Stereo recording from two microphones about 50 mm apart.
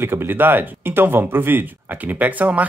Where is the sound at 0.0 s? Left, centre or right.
Right.